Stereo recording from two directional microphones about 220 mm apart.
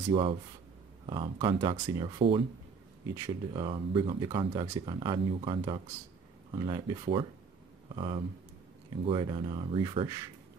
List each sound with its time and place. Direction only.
0.1 s speech: 25° right (ahead or behind)